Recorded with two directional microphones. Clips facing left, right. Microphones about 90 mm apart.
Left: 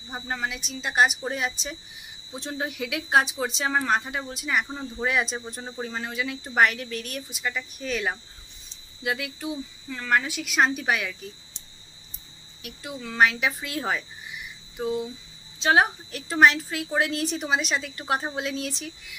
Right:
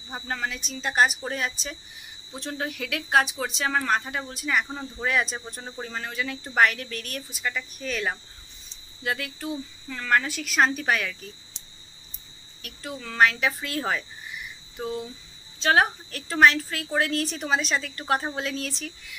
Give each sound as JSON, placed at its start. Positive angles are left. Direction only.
{"t": 0.1, "sound": "a woman's voice", "side_deg": 10}
{"t": 4.6, "sound": "speech", "side_deg": 0}
{"t": 5.0, "sound": "a woman's voice", "side_deg": 15}
{"t": 12.6, "sound": "a woman's voice", "side_deg": 15}